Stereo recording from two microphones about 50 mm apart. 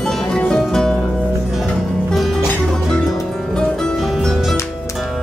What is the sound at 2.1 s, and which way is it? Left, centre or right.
Music, centre.